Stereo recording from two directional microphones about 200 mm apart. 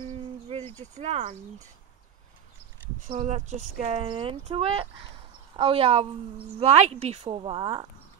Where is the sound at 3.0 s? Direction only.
35° right (ahead or behind).